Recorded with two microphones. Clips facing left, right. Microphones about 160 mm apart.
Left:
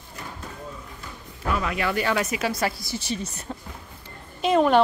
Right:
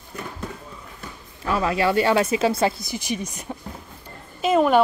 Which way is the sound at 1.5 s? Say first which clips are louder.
Right 5 dB; 30° right (ahead or behind).